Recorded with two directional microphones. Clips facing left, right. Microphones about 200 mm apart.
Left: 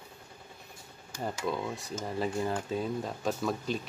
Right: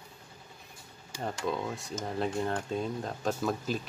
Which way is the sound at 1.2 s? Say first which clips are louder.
Even; centre (ahead or behind).